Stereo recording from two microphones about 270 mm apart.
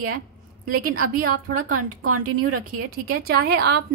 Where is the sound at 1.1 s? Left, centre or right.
Right.